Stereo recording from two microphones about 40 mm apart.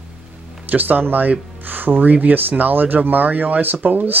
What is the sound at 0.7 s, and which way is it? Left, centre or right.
Speech, right.